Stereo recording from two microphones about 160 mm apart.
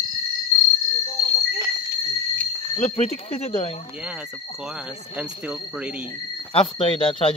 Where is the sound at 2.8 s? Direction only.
40° left (ahead or behind).